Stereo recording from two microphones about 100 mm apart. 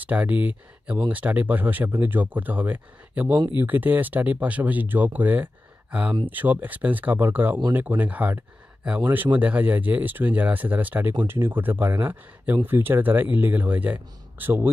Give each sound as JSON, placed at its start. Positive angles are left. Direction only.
{"t": 0.0, "sound": "speech", "side_deg": -15}